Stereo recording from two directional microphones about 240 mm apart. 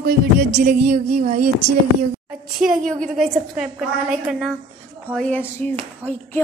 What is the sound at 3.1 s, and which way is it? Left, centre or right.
A woman's voice, centre.